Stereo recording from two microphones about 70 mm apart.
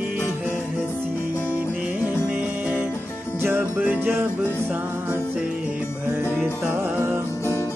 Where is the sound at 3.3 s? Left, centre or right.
Right.